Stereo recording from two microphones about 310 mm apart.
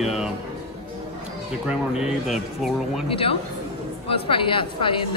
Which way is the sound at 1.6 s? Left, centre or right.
Centre.